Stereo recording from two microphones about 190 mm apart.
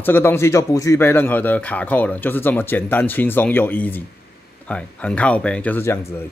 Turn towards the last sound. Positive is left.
turn(degrees=15)  # may be behind; listen again after turning